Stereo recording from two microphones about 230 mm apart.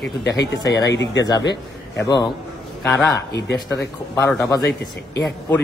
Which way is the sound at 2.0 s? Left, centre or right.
Centre.